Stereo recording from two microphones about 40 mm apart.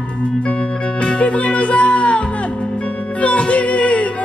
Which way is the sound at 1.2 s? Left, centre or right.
Left.